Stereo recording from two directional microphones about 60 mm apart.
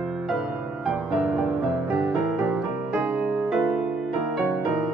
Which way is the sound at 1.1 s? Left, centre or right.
Centre.